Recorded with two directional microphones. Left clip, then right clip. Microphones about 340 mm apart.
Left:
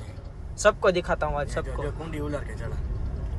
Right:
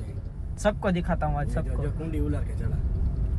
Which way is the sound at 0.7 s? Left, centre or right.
Centre.